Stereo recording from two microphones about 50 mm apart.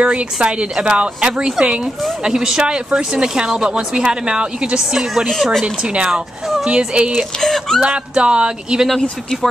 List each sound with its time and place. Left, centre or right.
0.0 s a woman's voice: right; by 5.7 s centre
5.8 s a woman's voice: centre
7.3 s speech: centre
7.8 s a woman's voice: right